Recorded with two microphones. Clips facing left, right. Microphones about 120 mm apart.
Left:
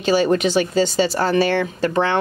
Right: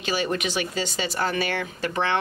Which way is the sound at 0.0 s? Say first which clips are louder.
Left 9 dB; 35° left (ahead or behind).